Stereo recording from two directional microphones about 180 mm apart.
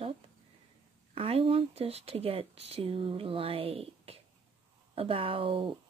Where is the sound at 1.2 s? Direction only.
35° right (ahead or behind).